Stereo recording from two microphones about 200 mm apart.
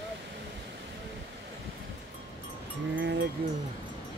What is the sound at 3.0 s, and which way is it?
Livestock, 65° right (ahead or behind).